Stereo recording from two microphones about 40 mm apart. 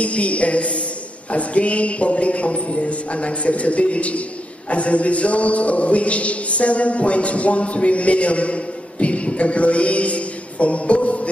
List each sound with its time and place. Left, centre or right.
0.0 s a man's voice: left